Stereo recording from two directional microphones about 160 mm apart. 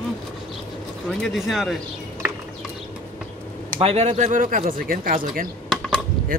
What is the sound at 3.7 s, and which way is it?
Speech, 40° right (ahead or behind).